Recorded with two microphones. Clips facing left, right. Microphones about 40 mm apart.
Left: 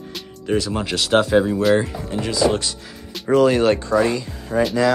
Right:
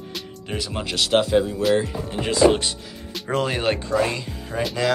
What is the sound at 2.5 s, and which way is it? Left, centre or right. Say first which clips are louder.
Speech: right 1 dB; right.